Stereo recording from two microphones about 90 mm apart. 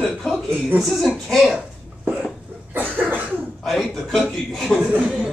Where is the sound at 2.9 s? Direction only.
20° right (ahead or behind).